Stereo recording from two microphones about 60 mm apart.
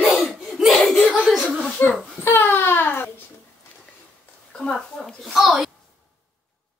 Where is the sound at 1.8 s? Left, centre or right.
Left.